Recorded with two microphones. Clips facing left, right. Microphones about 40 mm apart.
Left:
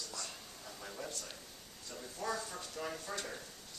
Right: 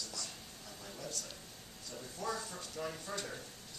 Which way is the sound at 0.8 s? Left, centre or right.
Centre.